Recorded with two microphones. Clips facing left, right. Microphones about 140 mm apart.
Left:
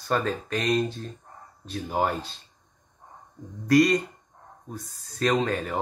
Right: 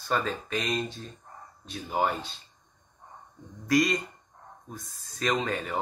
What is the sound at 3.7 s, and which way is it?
Speech, 40° left (ahead or behind).